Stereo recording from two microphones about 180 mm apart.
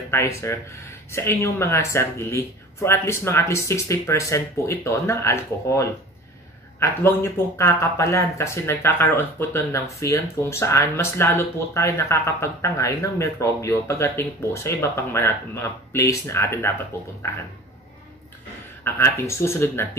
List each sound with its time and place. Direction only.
0.1 s speech: 15° left (ahead or behind)
18.9 s speech: 15° left (ahead or behind)